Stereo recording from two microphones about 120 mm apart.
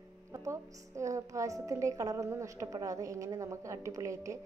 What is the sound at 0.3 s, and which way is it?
A woman's voice, 25° right (ahead or behind).